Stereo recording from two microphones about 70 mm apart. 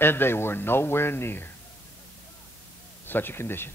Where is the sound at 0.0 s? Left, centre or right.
Left.